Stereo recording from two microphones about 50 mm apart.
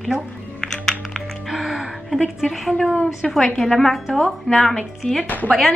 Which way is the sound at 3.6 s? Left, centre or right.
Centre.